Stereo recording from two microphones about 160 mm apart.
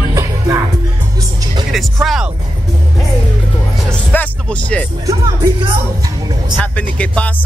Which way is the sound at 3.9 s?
5° left (ahead or behind).